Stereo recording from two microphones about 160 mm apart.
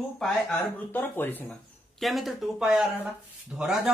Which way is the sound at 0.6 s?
15° left (ahead or behind).